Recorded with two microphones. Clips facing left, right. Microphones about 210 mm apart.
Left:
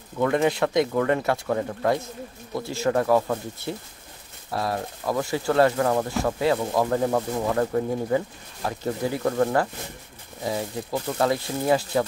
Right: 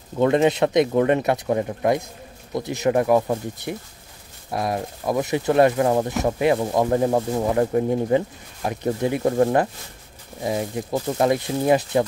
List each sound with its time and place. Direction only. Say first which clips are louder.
0.2 s speech: right 4 dB; 20° right (ahead or behind)